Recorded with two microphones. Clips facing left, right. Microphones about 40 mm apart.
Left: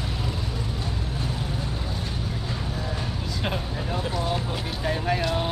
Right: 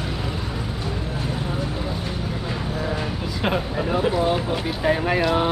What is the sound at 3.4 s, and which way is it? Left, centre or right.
Vehicle, right.